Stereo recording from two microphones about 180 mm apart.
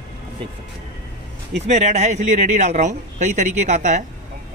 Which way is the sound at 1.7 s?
40° right (ahead or behind).